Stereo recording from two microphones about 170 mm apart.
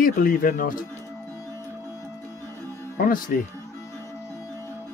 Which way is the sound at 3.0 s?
55° left (ahead or behind).